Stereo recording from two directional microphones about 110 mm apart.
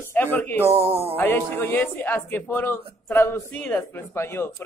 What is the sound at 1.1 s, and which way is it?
A man's voice, 20° left (ahead or behind).